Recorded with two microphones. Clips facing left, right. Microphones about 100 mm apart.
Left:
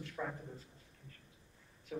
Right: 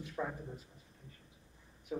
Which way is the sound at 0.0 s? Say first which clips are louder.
Right 2 dB; 15° right (ahead or behind).